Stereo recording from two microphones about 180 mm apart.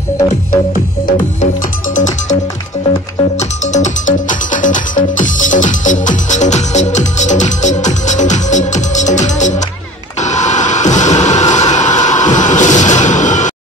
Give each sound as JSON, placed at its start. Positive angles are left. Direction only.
{"t": 2.0, "sound": "music", "side_deg": 40}
{"t": 3.3, "sound": "music", "side_deg": 40}